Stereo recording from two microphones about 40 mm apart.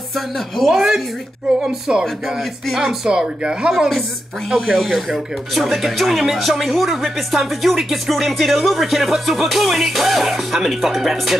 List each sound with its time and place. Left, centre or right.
0.7 s speech: centre
2.7 s speech: centre
3.1 s speech: right
4.6 s speech: centre